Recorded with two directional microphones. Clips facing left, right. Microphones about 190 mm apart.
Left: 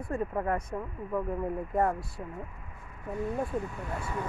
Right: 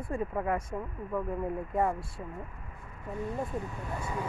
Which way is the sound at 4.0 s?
20° right (ahead or behind).